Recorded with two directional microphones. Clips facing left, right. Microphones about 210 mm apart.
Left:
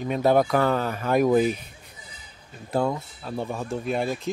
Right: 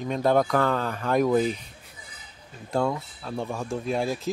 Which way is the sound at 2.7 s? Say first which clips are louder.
Left 1 dB; 5° left (ahead or behind).